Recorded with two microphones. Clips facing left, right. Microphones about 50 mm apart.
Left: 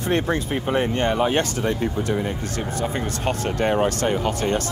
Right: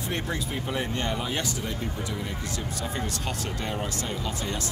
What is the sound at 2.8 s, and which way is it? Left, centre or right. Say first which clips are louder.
Speech: left 8 dB; left.